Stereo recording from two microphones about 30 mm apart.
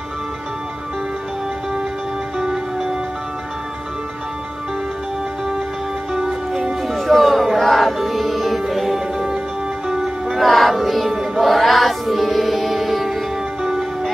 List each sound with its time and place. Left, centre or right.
2.3 s music: centre
6.1 s music: centre
6.8 s music: centre
10.3 s music: centre